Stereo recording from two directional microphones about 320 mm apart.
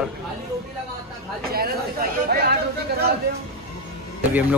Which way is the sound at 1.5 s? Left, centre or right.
Right.